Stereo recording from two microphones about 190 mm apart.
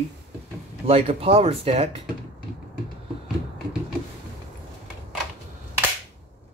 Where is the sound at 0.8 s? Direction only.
30° right (ahead or behind).